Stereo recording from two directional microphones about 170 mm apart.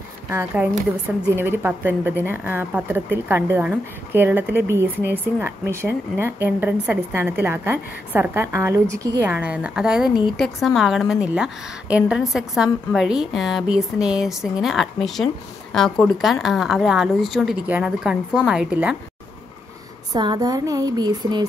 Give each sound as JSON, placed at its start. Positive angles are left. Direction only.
{"t": 0.3, "sound": "a woman's voice", "side_deg": -15}
{"t": 20.1, "sound": "speech", "side_deg": -25}